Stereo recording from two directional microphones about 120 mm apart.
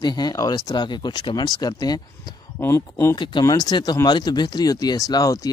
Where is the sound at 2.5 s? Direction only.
20° left (ahead or behind).